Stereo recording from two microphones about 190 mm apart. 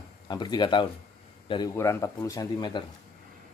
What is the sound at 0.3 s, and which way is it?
A man's voice, 20° left (ahead or behind).